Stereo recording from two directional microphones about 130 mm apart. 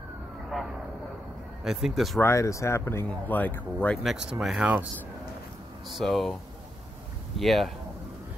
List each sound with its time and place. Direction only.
0.5 s vehicle: centre (ahead or behind)
1.6 s speech: 5° right (ahead or behind)
2.1 s speech: 20° left (ahead or behind)
3.9 s speech: centre (ahead or behind)
5.9 s speech: centre (ahead or behind)
7.3 s speech: centre (ahead or behind)